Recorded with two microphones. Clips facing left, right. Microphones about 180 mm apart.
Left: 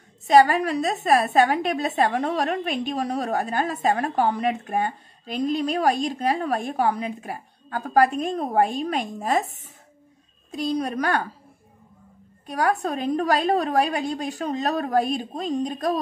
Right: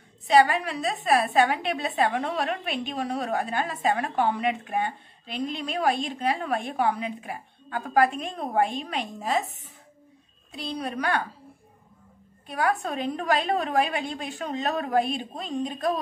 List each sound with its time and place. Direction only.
0.3 s a woman's voice: 45° left (ahead or behind)
10.5 s a woman's voice: 45° left (ahead or behind)
12.4 s a woman's voice: 40° left (ahead or behind)